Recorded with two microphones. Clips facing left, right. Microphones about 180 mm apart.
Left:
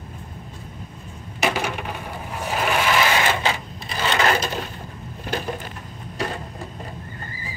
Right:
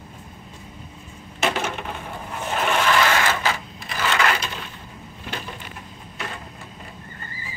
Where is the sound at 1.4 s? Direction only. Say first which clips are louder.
Left 1 dB; 10° left (ahead or behind).